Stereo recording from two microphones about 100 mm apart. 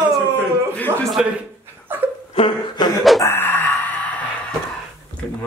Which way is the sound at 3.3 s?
20° left (ahead or behind).